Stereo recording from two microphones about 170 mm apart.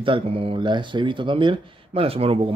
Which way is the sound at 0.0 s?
30° right (ahead or behind).